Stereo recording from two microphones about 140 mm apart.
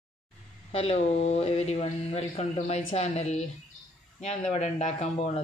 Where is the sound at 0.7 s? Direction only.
45° left (ahead or behind).